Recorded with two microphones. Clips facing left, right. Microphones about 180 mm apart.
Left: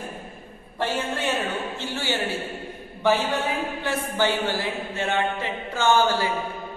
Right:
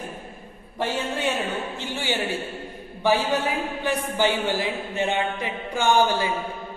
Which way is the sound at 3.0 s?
10° right (ahead or behind).